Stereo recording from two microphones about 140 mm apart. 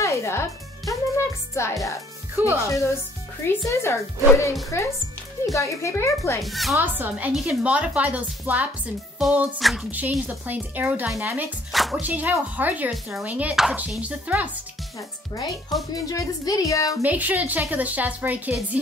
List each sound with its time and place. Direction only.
0.0 s music: 20° left (ahead or behind)
2.3 s a woman's voice: 15° right (ahead or behind)
2.7 s speech: 20° left (ahead or behind)
4.7 s speech: 20° left (ahead or behind)
6.4 s music: centre (ahead or behind)
6.7 s speech: 15° right (ahead or behind)
9.2 s music: 5° right (ahead or behind)
9.8 s speech: 10° right (ahead or behind)
11.7 s speech: centre (ahead or behind)
12.0 s speech: 10° right (ahead or behind)
15.9 s speech: 25° left (ahead or behind)
17.0 s speech: 10° right (ahead or behind)